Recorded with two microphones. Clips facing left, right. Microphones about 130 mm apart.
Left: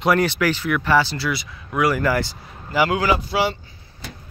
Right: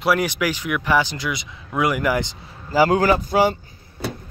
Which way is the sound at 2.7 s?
40° right (ahead or behind).